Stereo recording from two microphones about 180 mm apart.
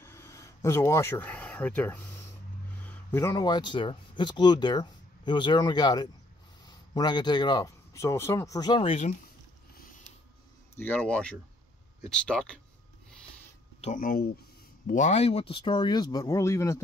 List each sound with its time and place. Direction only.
0.0 s a sound: 15° left (ahead or behind)
2.8 s speech: 10° left (ahead or behind); by 9.1 s 30° left (ahead or behind)
10.8 s speech: 10° left (ahead or behind)
13.7 s speech: 45° left (ahead or behind)
14.9 s speech: 40° left (ahead or behind); by 16.8 s 15° left (ahead or behind)